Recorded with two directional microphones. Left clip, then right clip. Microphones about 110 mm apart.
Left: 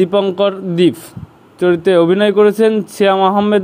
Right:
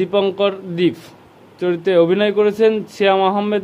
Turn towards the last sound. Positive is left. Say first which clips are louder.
# left 5 dB
turn(degrees=35)  # may be behind; listen again after turning